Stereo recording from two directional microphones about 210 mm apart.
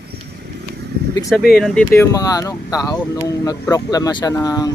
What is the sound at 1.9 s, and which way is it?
Speech, 15° left (ahead or behind).